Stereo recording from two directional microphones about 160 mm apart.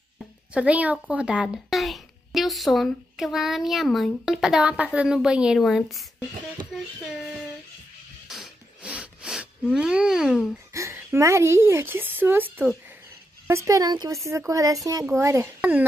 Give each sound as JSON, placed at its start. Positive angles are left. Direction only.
{"t": 0.5, "sound": "a woman's voice", "side_deg": -10}
{"t": 8.3, "sound": "a sound", "side_deg": -5}
{"t": 9.8, "sound": "a woman's voice", "side_deg": -5}
{"t": 10.7, "sound": "speech", "side_deg": -20}